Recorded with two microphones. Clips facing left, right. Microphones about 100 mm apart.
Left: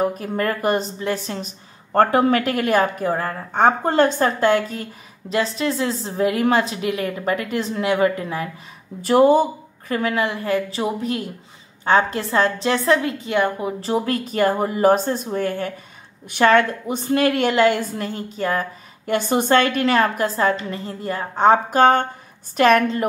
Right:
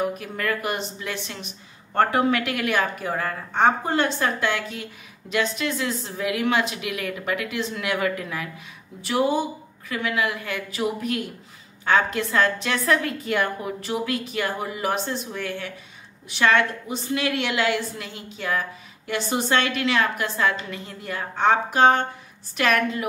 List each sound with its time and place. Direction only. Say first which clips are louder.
0.0 s a woman's voice: left 5 dB; 35° left (ahead or behind)
9.0 s a woman's voice: left 8 dB; 45° left (ahead or behind)